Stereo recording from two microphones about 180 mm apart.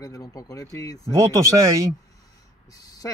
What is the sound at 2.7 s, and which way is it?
Speech, 20° left (ahead or behind).